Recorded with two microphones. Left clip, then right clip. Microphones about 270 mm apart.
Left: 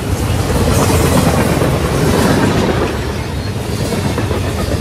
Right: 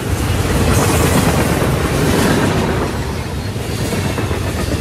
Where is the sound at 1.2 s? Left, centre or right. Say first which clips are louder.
Left 2 dB; centre.